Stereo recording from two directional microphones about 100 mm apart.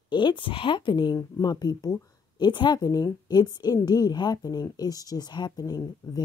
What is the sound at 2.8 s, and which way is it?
Speech, 35° left (ahead or behind).